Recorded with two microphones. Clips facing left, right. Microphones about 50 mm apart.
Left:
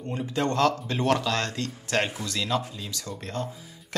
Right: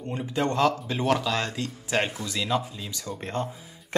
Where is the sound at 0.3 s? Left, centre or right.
Centre.